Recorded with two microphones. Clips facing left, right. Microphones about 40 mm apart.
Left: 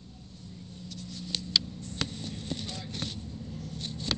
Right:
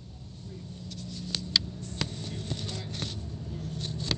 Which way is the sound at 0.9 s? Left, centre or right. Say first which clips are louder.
Even; left.